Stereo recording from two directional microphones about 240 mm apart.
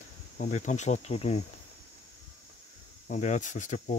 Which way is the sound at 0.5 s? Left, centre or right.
Left.